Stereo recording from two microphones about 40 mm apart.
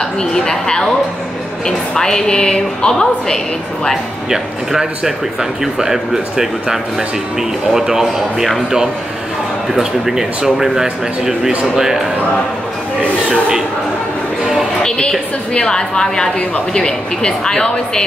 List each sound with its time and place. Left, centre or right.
0.2 s a woman's voice: centre
4.3 s speech: centre
9.8 s speech: centre
14.4 s music: centre
14.8 s a woman's voice: centre